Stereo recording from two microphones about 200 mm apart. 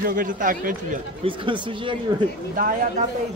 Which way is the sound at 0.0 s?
45° right (ahead or behind).